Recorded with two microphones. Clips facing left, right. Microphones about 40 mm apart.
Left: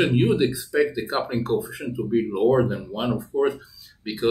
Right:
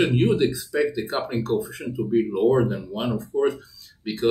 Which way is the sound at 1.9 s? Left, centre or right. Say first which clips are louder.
Right 1 dB; centre.